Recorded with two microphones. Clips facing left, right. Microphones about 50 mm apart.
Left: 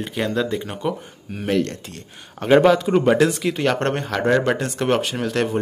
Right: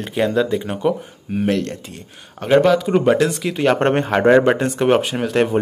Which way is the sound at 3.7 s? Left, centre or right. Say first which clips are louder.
Right 6 dB; right.